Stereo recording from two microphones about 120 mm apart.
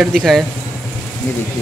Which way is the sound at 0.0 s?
Centre (ahead or behind).